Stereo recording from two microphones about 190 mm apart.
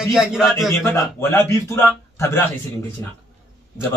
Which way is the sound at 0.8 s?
15° left (ahead or behind).